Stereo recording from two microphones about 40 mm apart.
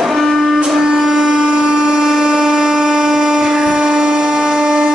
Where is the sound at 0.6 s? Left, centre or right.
Centre.